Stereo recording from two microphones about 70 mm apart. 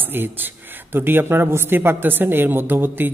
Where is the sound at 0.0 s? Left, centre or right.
Right.